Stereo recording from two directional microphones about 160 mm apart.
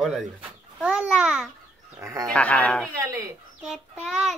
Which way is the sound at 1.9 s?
20° right (ahead or behind).